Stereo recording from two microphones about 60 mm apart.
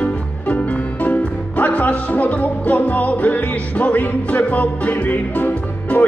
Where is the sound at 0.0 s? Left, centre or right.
Left.